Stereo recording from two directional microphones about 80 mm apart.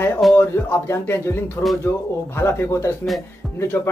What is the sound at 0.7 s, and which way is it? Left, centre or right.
A man's voice, left.